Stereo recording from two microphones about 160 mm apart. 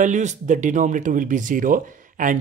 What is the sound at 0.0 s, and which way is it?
Speech, 50° right (ahead or behind).